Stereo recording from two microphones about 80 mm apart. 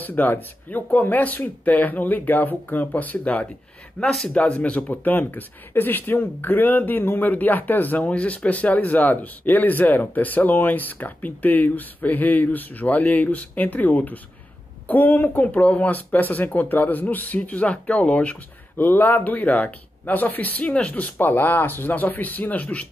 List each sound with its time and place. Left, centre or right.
0.0 s speech: left
4.0 s speech: centre